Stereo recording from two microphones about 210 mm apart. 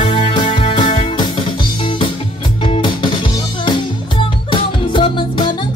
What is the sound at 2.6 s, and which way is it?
Music, 25° left (ahead or behind).